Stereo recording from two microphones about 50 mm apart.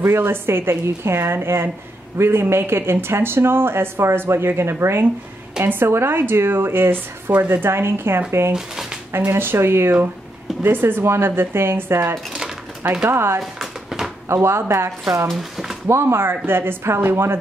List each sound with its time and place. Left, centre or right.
0.0 s a woman's voice: right
10.6 s speech: right
13.4 s a sound: centre
14.3 s a woman's voice: right
15.2 s speech: centre
15.9 s speech: right